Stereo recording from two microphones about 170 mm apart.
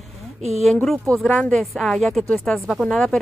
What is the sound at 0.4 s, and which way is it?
Speech, 40° right (ahead or behind).